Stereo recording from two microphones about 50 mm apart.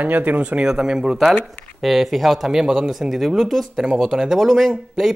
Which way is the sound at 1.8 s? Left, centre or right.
Centre.